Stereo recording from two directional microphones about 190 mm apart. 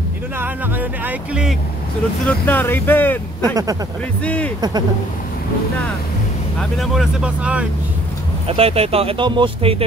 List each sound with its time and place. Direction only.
0.4 s speech: 10° right (ahead or behind)
2.2 s speech: 10° left (ahead or behind)
3.4 s speech: 20° right (ahead or behind)
4.2 s speech: 5° left (ahead or behind)
6.6 s speech: centre (ahead or behind)
8.5 s speech: 30° right (ahead or behind)